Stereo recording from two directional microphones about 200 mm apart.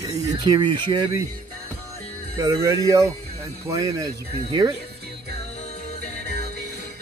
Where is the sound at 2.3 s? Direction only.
15° right (ahead or behind).